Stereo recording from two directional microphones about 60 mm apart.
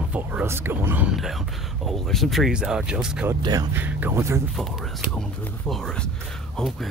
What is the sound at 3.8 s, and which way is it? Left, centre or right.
Speech, right.